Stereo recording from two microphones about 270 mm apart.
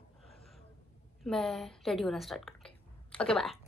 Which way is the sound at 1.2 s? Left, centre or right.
Centre.